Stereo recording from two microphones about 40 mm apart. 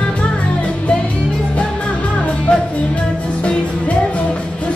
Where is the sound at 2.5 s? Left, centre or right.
Left.